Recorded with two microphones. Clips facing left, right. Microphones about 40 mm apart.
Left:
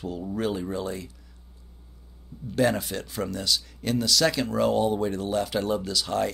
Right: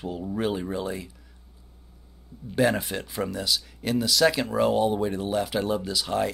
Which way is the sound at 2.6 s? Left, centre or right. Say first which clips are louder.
Right 1 dB; centre.